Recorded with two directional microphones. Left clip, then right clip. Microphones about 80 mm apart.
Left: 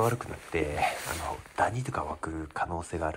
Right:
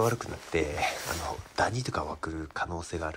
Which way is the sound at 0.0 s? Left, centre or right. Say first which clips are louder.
Even; right.